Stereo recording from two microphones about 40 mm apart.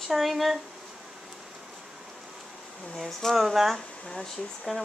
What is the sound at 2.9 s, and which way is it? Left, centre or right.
Speech, centre.